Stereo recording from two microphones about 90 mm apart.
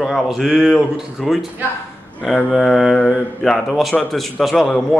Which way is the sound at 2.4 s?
Centre (ahead or behind).